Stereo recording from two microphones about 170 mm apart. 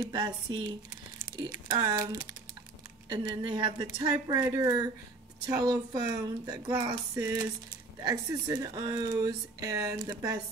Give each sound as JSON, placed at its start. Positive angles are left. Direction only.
{"t": 0.0, "sound": "speech", "side_deg": -25}